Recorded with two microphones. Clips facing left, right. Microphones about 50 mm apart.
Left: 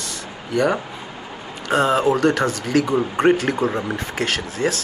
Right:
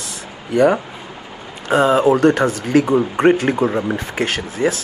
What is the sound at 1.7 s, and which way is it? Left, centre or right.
Speech, centre.